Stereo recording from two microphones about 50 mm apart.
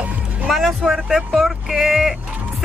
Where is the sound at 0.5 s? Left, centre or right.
Centre.